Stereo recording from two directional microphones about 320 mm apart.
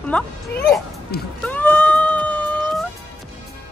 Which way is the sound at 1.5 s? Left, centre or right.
Centre.